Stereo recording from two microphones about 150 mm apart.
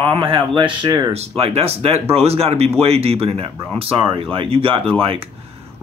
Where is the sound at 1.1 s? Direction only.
45° right (ahead or behind).